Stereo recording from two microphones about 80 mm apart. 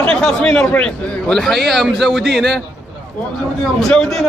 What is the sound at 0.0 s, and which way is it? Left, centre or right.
A man's voice, centre.